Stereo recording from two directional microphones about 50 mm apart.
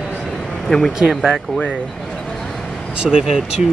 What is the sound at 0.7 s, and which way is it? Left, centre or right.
Speech, centre.